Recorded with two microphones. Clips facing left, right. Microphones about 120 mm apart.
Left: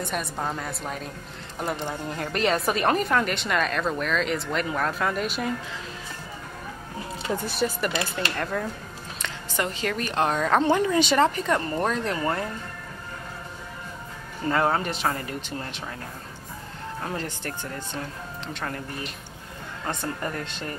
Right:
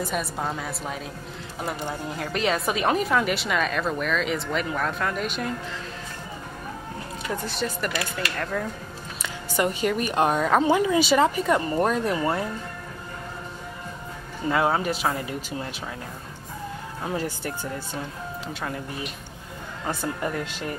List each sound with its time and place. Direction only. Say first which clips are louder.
0.0 s a woman's voice: right 1 dB; centre (ahead or behind)
7.4 s a woman's voice: left 3 dB; 5° left (ahead or behind)
7.9 s speech: left 1 dB; 25° left (ahead or behind)
8.4 s a woman's voice: right 1 dB; centre (ahead or behind)
9.2 s a woman's voice: right 4 dB; 10° right (ahead or behind)
14.5 s a woman's voice: right 1 dB; 10° right (ahead or behind)
17.0 s a woman's voice: right 4 dB; 10° right (ahead or behind)
19.8 s a woman's voice: right 2 dB; 10° right (ahead or behind)